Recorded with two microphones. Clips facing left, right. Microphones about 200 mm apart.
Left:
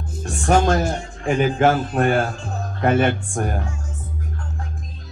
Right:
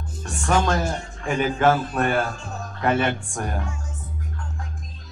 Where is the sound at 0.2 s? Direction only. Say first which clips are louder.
Left 4 dB; 45° left (ahead or behind).